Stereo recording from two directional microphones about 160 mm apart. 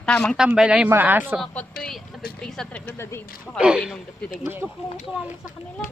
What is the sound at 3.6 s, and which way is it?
Speech, 5° right (ahead or behind).